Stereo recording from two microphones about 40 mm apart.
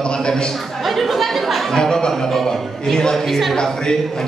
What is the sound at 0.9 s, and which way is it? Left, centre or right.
Chatter, centre.